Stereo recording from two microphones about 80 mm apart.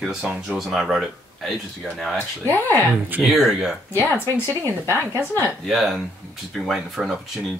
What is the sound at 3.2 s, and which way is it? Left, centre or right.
Speech, centre.